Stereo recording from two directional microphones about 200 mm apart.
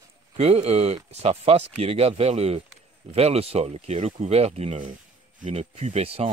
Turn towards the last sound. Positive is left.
turn(degrees=-30)  # may be behind; listen again after turning